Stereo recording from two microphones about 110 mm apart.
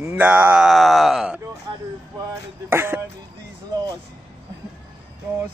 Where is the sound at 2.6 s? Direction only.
20° right (ahead or behind).